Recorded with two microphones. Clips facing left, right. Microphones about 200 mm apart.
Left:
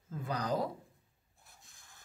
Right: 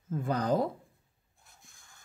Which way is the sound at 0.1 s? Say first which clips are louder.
Right 6 dB; 50° right (ahead or behind).